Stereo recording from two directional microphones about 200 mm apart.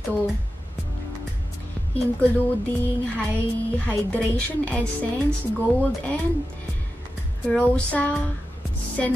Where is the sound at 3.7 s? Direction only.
10° left (ahead or behind).